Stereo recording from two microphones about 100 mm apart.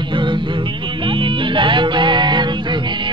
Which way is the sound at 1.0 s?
60° right (ahead or behind).